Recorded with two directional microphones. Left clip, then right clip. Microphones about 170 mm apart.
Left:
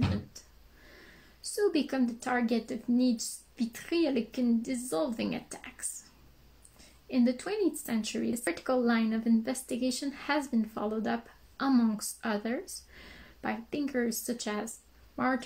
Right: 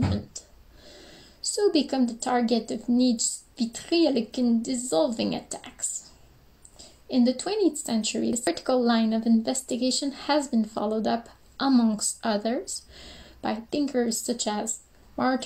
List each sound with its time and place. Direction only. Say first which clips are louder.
1.6 s speech: right 5 dB; 20° right (ahead or behind)
7.1 s speech: right 5 dB; 20° right (ahead or behind)